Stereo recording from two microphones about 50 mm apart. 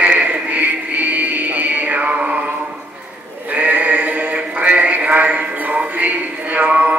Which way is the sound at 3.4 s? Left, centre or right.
Right.